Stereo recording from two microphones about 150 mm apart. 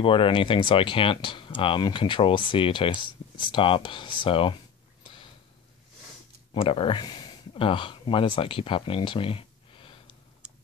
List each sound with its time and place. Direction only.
0.0 s speech: 35° left (ahead or behind)
5.0 s a sound: 35° left (ahead or behind)
6.5 s speech: 35° left (ahead or behind)